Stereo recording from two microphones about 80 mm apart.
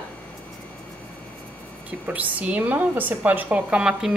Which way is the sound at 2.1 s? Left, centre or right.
Centre.